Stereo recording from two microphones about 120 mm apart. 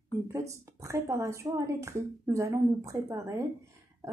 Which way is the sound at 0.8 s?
25° right (ahead or behind).